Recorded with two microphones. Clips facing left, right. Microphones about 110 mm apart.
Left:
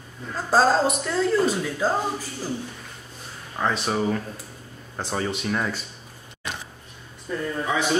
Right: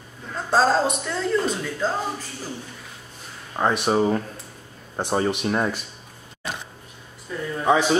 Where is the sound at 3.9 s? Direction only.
25° right (ahead or behind).